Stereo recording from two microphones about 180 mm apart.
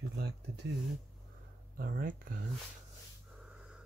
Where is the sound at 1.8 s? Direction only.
55° right (ahead or behind).